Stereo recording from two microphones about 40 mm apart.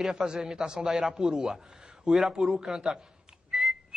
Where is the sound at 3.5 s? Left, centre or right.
Centre.